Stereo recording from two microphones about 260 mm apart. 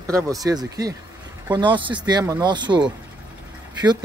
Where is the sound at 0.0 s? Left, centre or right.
Centre.